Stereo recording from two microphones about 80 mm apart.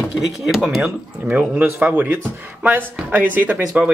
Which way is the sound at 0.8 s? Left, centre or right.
Centre.